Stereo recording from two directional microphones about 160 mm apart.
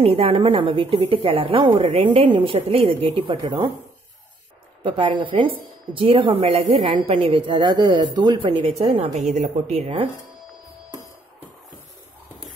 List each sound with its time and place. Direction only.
0.0 s a woman's voice: 35° right (ahead or behind)
1.8 s a woman's voice: 45° right (ahead or behind); by 3.7 s 30° right (ahead or behind)
4.8 s a woman's voice: 30° right (ahead or behind)